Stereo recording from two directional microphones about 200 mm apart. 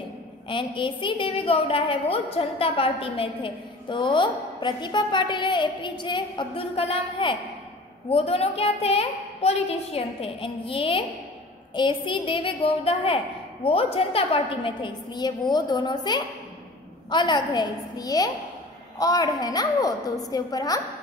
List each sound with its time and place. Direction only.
0.5 s a woman's voice: 25° left (ahead or behind)